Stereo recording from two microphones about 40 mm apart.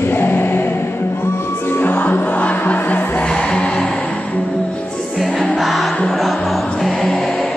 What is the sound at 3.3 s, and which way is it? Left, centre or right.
Music, left.